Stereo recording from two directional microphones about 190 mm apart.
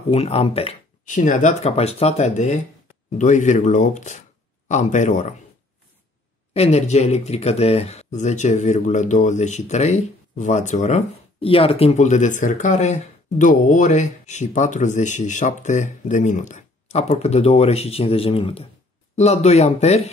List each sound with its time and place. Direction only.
0.1 s speech: 30° left (ahead or behind)
6.5 s speech: 35° left (ahead or behind)